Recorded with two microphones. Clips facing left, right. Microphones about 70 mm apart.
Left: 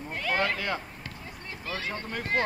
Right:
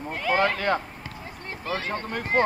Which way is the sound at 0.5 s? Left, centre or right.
Right.